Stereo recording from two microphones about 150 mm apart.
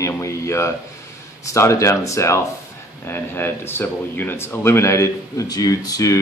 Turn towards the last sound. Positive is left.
turn(degrees=20)  # may be behind; listen again after turning